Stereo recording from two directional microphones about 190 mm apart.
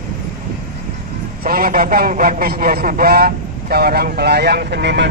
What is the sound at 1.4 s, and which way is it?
A man's voice, 50° right (ahead or behind).